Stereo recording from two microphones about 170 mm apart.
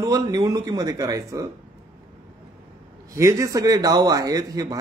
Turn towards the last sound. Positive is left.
turn(degrees=-20)  # may be behind; listen again after turning